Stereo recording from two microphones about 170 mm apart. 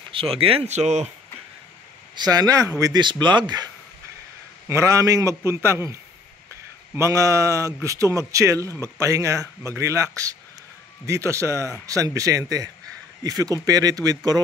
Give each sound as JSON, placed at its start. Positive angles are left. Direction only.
{"t": 0.1, "sound": "speech", "side_deg": -35}
{"t": 2.1, "sound": "a man's voice", "side_deg": -25}
{"t": 7.0, "sound": "a man's voice", "side_deg": -20}